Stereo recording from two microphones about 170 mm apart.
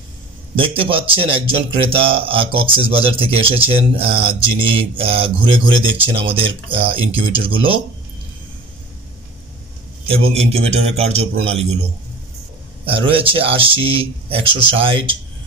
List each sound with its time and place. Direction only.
0.6 s speech: 30° right (ahead or behind)
10.0 s speech: 35° right (ahead or behind)
12.8 s speech: 30° right (ahead or behind)